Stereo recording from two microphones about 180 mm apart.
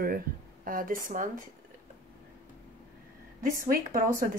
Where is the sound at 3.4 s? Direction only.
50° right (ahead or behind).